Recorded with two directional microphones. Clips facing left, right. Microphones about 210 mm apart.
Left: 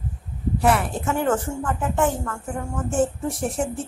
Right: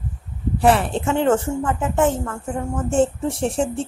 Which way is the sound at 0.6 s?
30° right (ahead or behind).